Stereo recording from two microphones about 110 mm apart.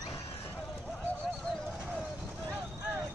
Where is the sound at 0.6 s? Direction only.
Centre (ahead or behind).